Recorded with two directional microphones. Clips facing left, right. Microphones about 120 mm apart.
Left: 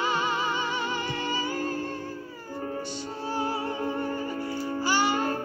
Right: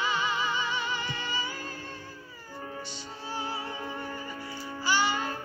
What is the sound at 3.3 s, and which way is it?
Music, 45° left (ahead or behind).